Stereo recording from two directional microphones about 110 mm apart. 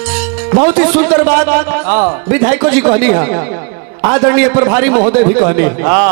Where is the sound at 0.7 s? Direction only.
25° right (ahead or behind).